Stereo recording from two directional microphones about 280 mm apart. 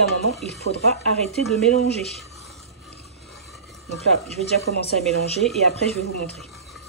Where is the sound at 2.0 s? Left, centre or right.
Centre.